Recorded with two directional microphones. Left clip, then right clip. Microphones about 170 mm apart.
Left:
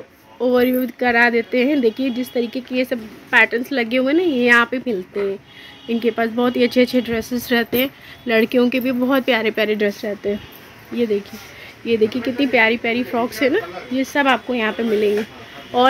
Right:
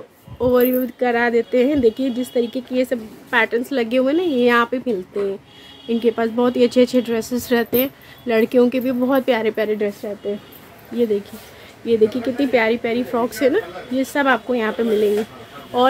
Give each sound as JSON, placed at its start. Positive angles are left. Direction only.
{"t": 0.4, "sound": "speech", "side_deg": 5}
{"t": 9.7, "sound": "speech", "side_deg": 20}
{"t": 11.8, "sound": "speech", "side_deg": 0}